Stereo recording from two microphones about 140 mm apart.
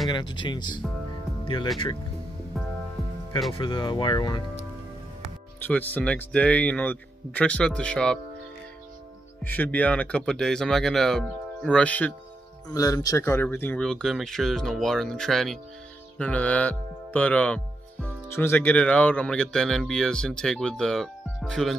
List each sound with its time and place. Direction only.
0.1 s speech: 35° left (ahead or behind)
1.4 s music: 35° left (ahead or behind)
3.5 s speech: 40° left (ahead or behind)
5.6 s speech: 10° left (ahead or behind)
9.4 s speech: 10° left (ahead or behind)
12.7 s speech: 25° left (ahead or behind)
13.8 s speech: centre (ahead or behind)